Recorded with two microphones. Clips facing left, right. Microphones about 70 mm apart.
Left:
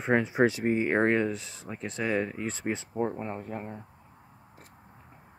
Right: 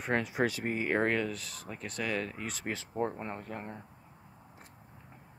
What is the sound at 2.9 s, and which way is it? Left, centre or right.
Speech, centre.